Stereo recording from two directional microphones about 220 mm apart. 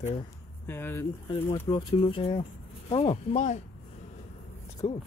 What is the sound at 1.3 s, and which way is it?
Speech, 25° left (ahead or behind).